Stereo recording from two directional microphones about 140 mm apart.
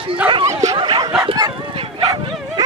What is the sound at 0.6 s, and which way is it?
Snicker, 35° right (ahead or behind).